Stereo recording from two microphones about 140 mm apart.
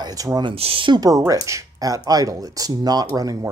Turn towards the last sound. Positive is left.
turn(degrees=-25)  # may be behind; listen again after turning